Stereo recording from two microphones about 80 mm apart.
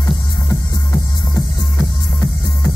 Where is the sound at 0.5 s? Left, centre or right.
Left.